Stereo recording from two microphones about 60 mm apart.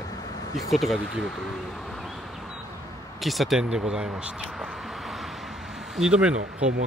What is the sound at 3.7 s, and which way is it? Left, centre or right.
Speech, centre.